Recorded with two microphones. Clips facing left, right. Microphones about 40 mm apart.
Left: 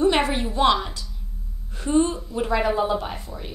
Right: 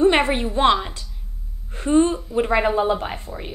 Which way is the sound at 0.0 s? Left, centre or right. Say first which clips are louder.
Right 3 dB; right.